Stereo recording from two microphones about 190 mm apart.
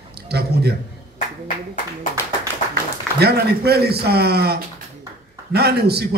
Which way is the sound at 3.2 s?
60° right (ahead or behind).